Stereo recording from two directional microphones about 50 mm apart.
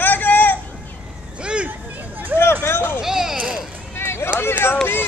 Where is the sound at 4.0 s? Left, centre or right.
Left.